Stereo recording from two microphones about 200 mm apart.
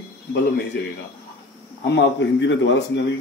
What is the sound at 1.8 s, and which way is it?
Speech, 65° left (ahead or behind).